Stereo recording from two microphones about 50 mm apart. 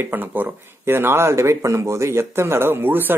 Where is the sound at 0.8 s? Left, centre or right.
Right.